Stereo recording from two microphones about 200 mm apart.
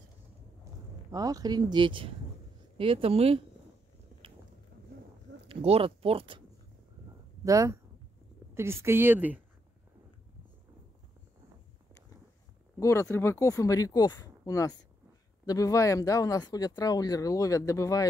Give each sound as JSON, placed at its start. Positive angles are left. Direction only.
{"t": 1.1, "sound": "speech", "side_deg": -20}
{"t": 5.5, "sound": "speech", "side_deg": -30}
{"t": 7.4, "sound": "a woman's voice", "side_deg": -15}
{"t": 12.7, "sound": "speech", "side_deg": 15}